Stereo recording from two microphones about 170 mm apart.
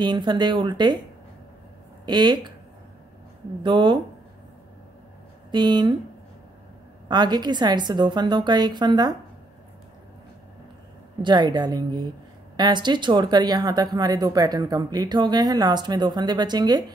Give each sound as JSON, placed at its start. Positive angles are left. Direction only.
{"t": 0.0, "sound": "speech", "side_deg": -25}
{"t": 2.0, "sound": "speech", "side_deg": -25}
{"t": 3.6, "sound": "speech", "side_deg": -30}
{"t": 5.5, "sound": "speech", "side_deg": -25}
{"t": 7.1, "sound": "speech", "side_deg": -25}
{"t": 11.2, "sound": "speech", "side_deg": -25}